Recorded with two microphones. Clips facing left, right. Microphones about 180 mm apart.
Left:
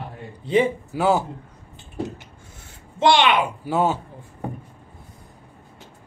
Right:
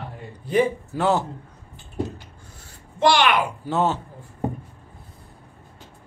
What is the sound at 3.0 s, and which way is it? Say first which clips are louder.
Speech: left 1 dB; 25° left (ahead or behind).